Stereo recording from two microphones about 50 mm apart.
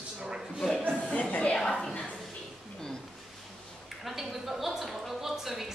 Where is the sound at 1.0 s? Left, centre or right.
Left.